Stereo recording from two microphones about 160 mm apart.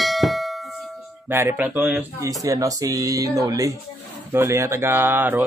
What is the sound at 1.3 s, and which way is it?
Speech, 15° right (ahead or behind).